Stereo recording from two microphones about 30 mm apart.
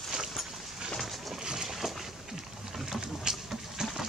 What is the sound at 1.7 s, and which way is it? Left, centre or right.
Boat, centre.